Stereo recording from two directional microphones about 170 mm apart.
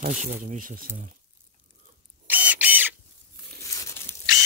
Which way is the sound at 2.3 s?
10° right (ahead or behind).